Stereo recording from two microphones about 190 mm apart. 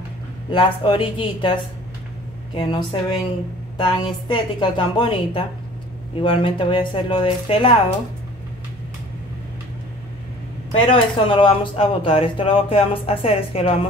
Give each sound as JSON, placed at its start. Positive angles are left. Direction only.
{"t": 0.5, "sound": "speech", "side_deg": 25}
{"t": 10.7, "sound": "speech", "side_deg": 30}